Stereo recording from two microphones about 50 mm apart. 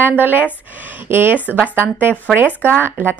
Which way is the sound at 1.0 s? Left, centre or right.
Right.